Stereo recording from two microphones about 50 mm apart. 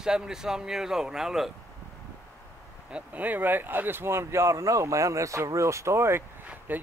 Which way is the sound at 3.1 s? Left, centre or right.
Right.